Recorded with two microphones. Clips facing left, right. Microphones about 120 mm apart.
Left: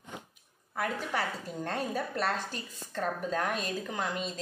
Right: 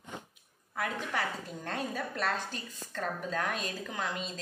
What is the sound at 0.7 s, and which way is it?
A woman's voice, 10° left (ahead or behind).